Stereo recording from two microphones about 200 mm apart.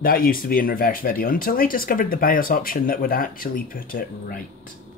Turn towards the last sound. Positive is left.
turn(degrees=45)  # may be behind; listen again after turning